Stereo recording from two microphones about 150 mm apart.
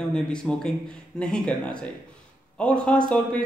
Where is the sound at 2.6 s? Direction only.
5° left (ahead or behind).